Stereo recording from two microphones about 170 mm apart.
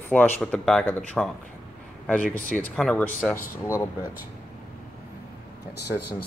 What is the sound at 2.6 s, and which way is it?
Speech, 5° left (ahead or behind).